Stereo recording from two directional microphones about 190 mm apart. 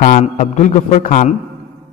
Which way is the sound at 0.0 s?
35° left (ahead or behind).